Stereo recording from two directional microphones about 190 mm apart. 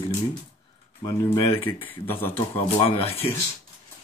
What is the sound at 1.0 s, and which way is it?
Speech, 15° left (ahead or behind).